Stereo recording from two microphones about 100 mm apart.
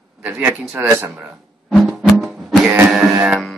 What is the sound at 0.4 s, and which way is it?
Speech, 10° right (ahead or behind).